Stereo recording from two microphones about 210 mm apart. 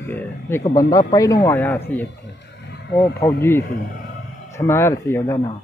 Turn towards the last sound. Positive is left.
turn(degrees=15)  # may be behind; listen again after turning